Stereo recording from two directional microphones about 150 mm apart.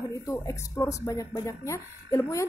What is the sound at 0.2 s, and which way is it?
A woman's voice, 20° left (ahead or behind).